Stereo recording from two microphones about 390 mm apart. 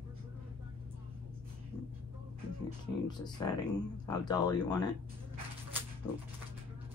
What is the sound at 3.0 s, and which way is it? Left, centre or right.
Speech, centre.